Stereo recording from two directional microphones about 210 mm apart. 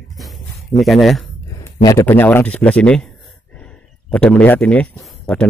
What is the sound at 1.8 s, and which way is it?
Speech, 10° left (ahead or behind).